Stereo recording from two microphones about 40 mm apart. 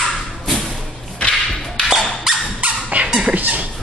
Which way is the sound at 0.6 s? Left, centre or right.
Centre.